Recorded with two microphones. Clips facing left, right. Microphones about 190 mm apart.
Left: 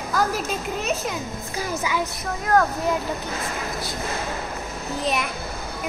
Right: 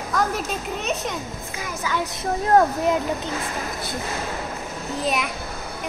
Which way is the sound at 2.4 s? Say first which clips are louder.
Right 2 dB; 25° right (ahead or behind).